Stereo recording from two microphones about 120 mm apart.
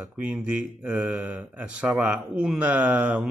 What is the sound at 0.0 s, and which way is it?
Speech, 10° right (ahead or behind).